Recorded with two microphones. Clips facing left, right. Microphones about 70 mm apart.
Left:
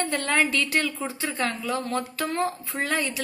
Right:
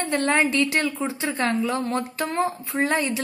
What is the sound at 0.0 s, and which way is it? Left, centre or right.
A woman's voice, right.